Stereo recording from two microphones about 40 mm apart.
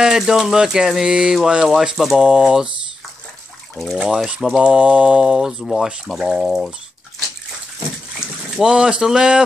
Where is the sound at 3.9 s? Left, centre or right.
Centre.